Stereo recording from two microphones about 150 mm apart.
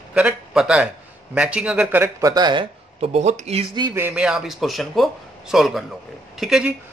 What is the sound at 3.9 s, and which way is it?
A man's voice, 15° right (ahead or behind).